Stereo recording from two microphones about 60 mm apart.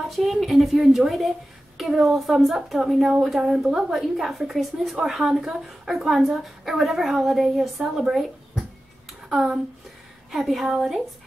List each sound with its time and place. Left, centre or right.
0.1 s a woman's voice: centre
10.3 s a woman's voice: centre